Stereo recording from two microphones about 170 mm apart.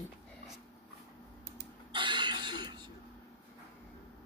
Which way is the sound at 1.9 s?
30° right (ahead or behind).